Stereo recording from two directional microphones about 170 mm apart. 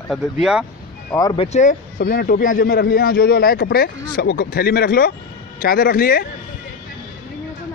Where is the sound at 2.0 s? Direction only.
60° left (ahead or behind).